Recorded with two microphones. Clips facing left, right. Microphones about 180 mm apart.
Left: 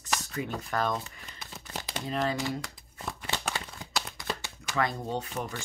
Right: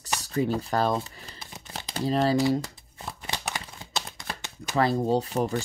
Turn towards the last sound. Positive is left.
turn(degrees=-35)  # may be behind; listen again after turning